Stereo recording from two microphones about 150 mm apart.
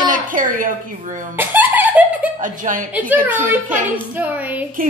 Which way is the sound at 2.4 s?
60° right (ahead or behind).